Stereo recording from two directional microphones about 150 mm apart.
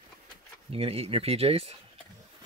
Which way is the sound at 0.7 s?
40° right (ahead or behind).